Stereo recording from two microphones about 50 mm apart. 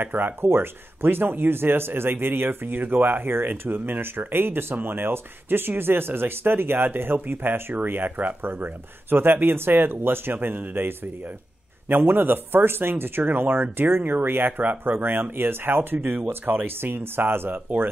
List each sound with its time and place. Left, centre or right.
0.0 s speech: right
11.9 s speech: right
16.0 s speech: right
16.3 s speech: right